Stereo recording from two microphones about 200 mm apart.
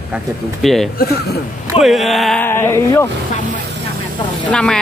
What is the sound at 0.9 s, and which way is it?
Speech, 50° left (ahead or behind).